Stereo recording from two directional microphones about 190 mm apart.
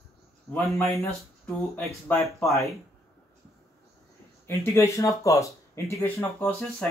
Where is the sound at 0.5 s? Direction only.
15° left (ahead or behind).